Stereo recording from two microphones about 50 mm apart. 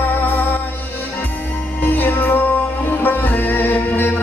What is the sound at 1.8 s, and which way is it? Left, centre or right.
Music, left.